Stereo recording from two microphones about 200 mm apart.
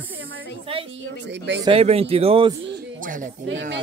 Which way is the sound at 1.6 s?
30° right (ahead or behind).